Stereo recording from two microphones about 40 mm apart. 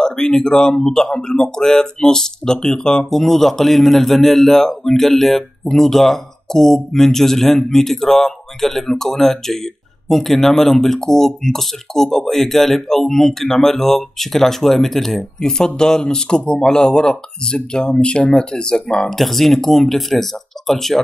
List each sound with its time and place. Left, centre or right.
0.0 s speech: centre
19.0 s speech: centre